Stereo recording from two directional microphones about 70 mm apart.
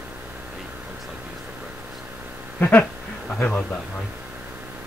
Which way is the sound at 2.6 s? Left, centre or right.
Left.